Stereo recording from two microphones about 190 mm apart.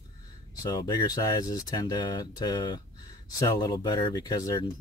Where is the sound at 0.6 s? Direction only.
20° left (ahead or behind).